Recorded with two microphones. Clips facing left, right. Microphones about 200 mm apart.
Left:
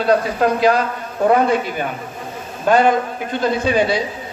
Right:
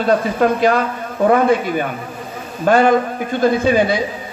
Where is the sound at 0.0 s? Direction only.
50° right (ahead or behind).